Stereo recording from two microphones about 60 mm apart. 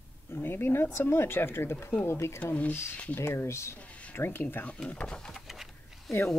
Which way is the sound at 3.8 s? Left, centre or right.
Left.